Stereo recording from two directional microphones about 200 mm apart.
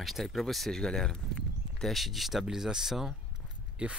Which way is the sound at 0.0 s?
Centre (ahead or behind).